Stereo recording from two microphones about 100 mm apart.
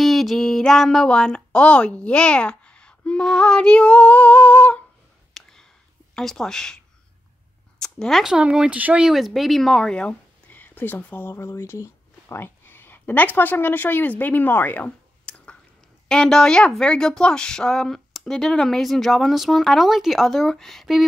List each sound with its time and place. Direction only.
0.0 s speech: centre (ahead or behind)
5.3 s a sound: 5° left (ahead or behind)
6.1 s speech: 5° left (ahead or behind)
7.8 s speech: 5° left (ahead or behind)